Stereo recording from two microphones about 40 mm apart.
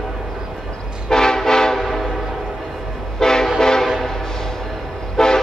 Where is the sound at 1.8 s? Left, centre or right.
Centre.